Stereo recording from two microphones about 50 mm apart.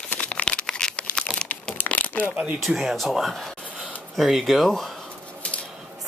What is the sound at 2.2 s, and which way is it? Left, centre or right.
Speech, right.